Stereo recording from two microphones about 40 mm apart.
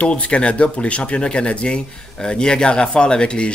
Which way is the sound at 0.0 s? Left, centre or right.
Left.